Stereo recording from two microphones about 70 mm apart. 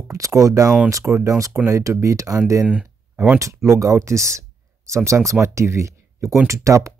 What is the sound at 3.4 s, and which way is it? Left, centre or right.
Speech, right.